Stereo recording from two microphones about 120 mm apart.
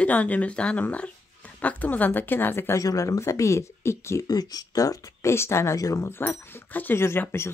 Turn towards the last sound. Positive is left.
turn(degrees=20)  # may be behind; listen again after turning